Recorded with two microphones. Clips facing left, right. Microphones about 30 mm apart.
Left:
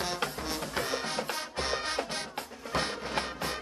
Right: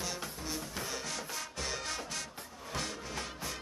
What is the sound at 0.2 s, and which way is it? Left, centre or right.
Music, left.